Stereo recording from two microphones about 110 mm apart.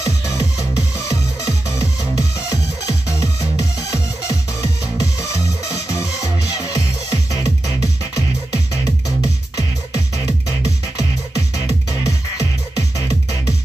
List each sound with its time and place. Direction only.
0.0 s music: 30° left (ahead or behind)